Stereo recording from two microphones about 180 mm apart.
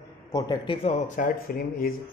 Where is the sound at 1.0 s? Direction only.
45° left (ahead or behind).